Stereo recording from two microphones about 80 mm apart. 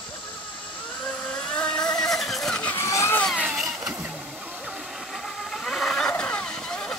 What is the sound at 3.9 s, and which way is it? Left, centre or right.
Vehicle, centre.